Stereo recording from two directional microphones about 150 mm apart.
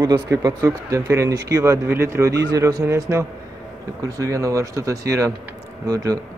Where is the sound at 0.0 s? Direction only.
25° right (ahead or behind).